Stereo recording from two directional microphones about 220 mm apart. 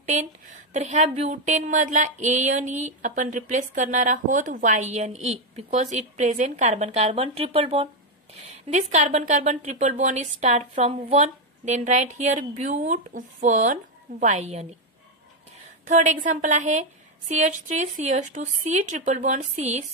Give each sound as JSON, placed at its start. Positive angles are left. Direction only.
{"t": 0.7, "sound": "a woman's voice", "side_deg": -30}
{"t": 15.9, "sound": "a woman's voice", "side_deg": -35}